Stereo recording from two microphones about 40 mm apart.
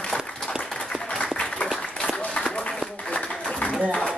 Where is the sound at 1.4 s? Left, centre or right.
Left.